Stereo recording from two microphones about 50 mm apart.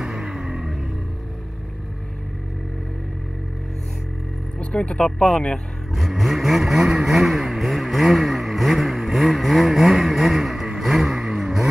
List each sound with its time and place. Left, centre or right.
0.0 s music: centre
4.6 s speech: left
5.9 s vehicle: centre